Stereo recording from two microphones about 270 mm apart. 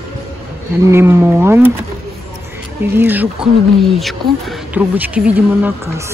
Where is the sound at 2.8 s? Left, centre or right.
Centre.